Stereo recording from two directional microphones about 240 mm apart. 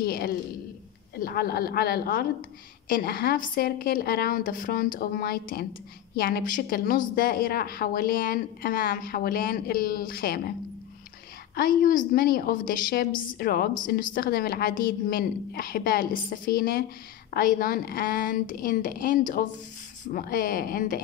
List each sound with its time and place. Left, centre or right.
0.0 s a sound: left
1.2 s a woman's voice: left
11.5 s a woman's voice: left